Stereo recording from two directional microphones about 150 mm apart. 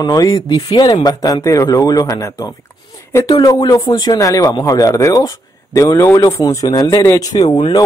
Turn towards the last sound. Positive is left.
turn(degrees=25)  # may be behind; listen again after turning